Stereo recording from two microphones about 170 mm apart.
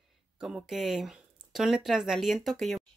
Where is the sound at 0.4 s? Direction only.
5° right (ahead or behind).